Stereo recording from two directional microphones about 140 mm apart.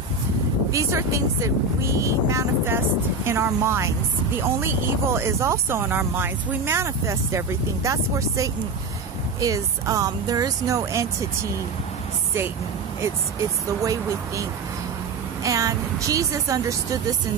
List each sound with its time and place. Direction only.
0.7 s speech: 20° right (ahead or behind)
13.7 s speech: 20° right (ahead or behind)
15.4 s speech: 25° right (ahead or behind)